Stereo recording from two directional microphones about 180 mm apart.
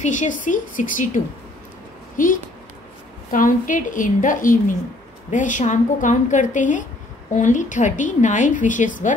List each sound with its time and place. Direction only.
0.0 s a woman's voice: 45° left (ahead or behind)